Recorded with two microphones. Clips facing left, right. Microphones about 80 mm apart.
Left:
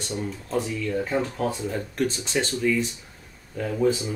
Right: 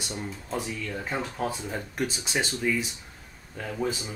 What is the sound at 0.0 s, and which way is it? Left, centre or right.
Speech, centre.